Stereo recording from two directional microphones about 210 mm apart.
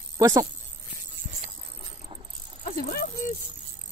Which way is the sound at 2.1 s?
25° right (ahead or behind).